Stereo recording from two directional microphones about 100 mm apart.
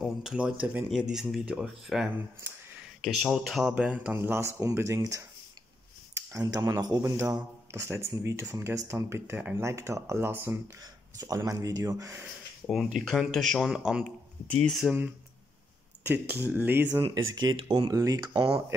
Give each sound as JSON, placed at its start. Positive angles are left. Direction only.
{"t": 0.0, "sound": "speech", "side_deg": -5}
{"t": 4.2, "sound": "speech", "side_deg": -25}
{"t": 6.3, "sound": "a man's voice", "side_deg": -35}
{"t": 10.8, "sound": "a man's voice", "side_deg": -40}
{"t": 13.3, "sound": "speech", "side_deg": 5}
{"t": 14.5, "sound": "speech", "side_deg": 5}
{"t": 16.0, "sound": "speech", "side_deg": -20}
{"t": 17.1, "sound": "speech", "side_deg": -40}
{"t": 17.9, "sound": "a man's voice", "side_deg": -35}